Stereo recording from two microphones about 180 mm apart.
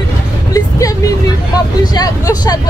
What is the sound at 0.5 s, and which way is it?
Vehicle, 20° left (ahead or behind).